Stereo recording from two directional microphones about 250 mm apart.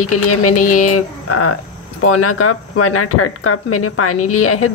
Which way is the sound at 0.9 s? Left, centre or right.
Left.